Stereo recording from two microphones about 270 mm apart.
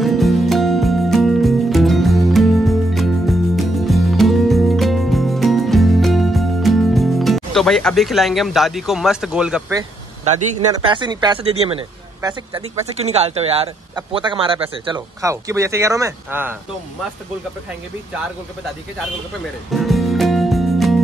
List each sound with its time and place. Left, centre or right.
0.0 s music: centre
10.2 s speech: right; by 16.5 s centre
19.7 s music: centre